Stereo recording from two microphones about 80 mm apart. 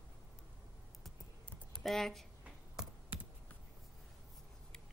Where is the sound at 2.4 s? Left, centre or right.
Centre.